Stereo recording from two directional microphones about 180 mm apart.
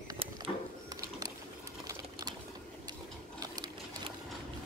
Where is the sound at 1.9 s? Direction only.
20° right (ahead or behind).